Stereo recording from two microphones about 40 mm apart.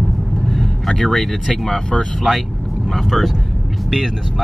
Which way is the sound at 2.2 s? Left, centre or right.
Centre.